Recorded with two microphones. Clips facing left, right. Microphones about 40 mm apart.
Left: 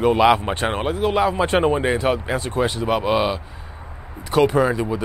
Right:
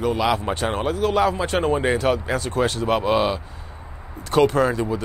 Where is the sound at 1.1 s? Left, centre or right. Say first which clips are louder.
Even; centre.